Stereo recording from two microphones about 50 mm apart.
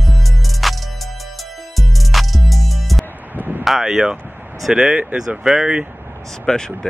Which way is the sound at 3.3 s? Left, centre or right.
Right.